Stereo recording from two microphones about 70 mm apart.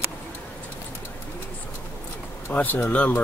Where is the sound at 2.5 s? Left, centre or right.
Left.